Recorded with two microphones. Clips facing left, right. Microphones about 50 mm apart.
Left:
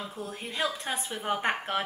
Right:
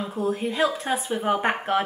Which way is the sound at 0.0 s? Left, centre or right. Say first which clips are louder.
Right 11 dB; centre.